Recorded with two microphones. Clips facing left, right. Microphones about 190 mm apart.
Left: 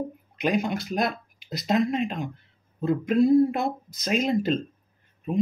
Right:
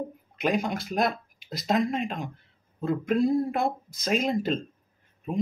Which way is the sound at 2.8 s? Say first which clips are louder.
Left 3 dB; centre (ahead or behind).